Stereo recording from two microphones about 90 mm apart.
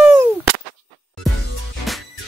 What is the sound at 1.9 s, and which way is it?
Music, centre (ahead or behind).